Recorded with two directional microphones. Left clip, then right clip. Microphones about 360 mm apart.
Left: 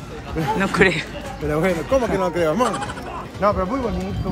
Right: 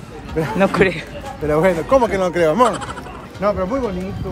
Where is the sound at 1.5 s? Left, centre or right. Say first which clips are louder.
Right 5 dB; centre.